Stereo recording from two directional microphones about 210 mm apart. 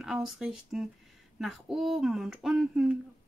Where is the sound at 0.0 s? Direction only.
Centre (ahead or behind).